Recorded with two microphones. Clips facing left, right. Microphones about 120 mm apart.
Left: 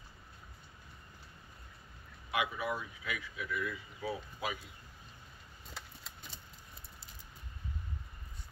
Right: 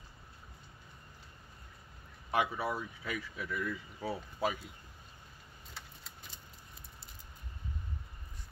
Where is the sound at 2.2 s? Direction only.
35° right (ahead or behind).